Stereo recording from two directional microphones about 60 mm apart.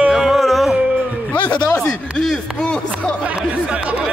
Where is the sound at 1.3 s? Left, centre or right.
Left.